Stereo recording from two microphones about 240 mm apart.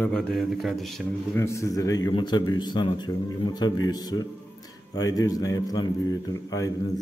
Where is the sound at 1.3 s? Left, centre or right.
Centre.